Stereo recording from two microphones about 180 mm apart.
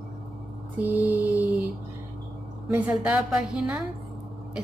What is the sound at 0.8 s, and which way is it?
Speech, 10° right (ahead or behind).